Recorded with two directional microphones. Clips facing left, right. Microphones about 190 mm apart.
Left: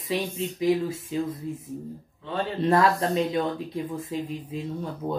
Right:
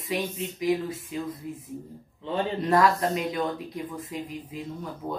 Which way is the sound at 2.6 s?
25° left (ahead or behind).